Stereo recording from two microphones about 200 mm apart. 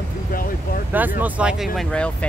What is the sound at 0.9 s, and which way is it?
Speech, 10° right (ahead or behind).